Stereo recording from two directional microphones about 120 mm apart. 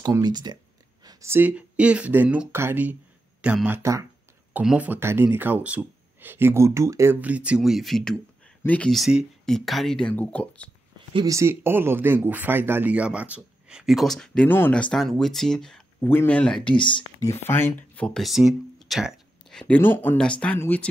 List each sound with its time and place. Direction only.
0.2 s speech: 35° right (ahead or behind)
1.2 s speech: 15° right (ahead or behind)
3.8 s speech: 25° right (ahead or behind)
4.6 s speech: 10° right (ahead or behind)
7.2 s speech: 10° right (ahead or behind); by 8.9 s 10° left (ahead or behind)
8.9 s speech: centre (ahead or behind)
11.2 s speech: 25° right (ahead or behind); by 15.8 s 5° left (ahead or behind)
16.0 s speech: 15° left (ahead or behind)
16.7 s speech: 45° left (ahead or behind)
17.2 s speech: 20° left (ahead or behind); by 19.1 s 5° right (ahead or behind)
19.7 s speech: 15° left (ahead or behind)